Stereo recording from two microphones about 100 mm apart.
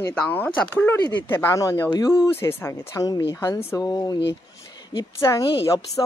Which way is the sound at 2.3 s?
25° left (ahead or behind).